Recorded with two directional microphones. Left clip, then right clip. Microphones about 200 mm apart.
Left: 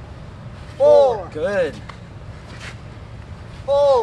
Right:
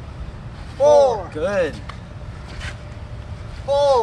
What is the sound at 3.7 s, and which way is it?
Speech, 20° right (ahead or behind).